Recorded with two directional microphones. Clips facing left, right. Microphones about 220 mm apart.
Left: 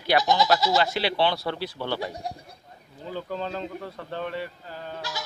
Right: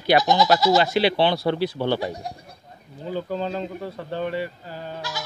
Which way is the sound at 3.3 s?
5° right (ahead or behind).